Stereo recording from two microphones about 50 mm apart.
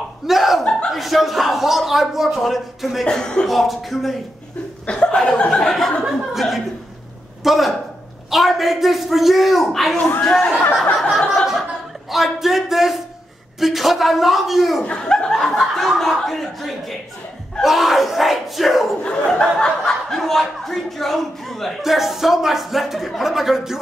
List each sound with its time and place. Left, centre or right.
0.3 s a man's voice: centre
3.1 s speech: centre
3.4 s a man's voice: centre
4.8 s chuckle: left
5.7 s a man's voice: centre
11.0 s speech: centre
12.1 s a man's voice: centre
14.8 s speech: centre
15.7 s a man's voice: centre
19.0 s a man's voice: centre